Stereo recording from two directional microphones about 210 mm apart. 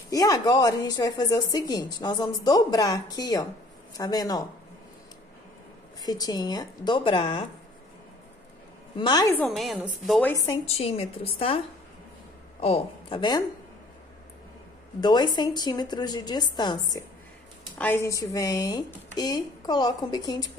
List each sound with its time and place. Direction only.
0.1 s a woman's voice: 15° left (ahead or behind)
5.9 s a woman's voice: 20° left (ahead or behind)
8.9 s a woman's voice: 20° left (ahead or behind)
9.4 s a woman's voice: centre (ahead or behind)
10.3 s a woman's voice: 20° left (ahead or behind)
15.0 s a woman's voice: 20° left (ahead or behind)